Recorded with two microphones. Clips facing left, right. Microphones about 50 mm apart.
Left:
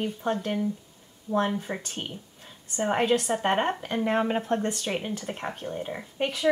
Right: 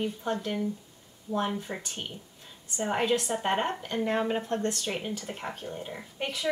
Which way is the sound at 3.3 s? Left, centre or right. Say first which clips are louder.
Left 3 dB; centre.